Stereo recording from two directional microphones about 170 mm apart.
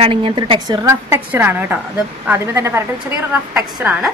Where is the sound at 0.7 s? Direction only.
15° right (ahead or behind).